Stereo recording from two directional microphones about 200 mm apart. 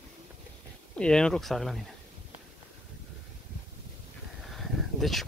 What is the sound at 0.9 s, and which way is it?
Speech, 5° left (ahead or behind).